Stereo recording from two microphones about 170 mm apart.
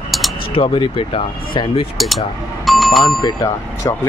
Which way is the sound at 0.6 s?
30° left (ahead or behind).